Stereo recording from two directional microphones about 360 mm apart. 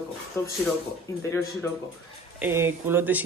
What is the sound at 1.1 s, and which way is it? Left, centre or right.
Speech, centre.